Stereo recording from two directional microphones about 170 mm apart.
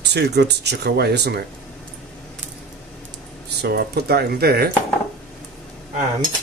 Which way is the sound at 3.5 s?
70° right (ahead or behind).